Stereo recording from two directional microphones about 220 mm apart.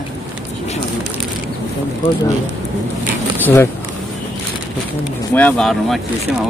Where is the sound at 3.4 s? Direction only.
10° left (ahead or behind).